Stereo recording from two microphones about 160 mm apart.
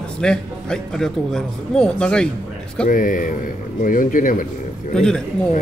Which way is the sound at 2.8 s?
55° left (ahead or behind).